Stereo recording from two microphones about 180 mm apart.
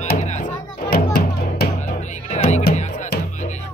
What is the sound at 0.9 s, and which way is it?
Music, 60° left (ahead or behind).